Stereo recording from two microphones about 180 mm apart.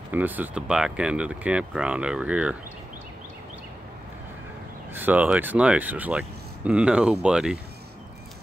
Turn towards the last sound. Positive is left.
turn(degrees=-5)  # may be behind; listen again after turning